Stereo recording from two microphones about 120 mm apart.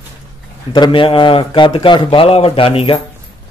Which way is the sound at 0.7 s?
45° left (ahead or behind).